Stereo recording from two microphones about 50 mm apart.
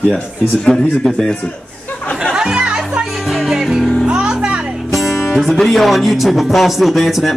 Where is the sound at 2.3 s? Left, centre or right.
Centre.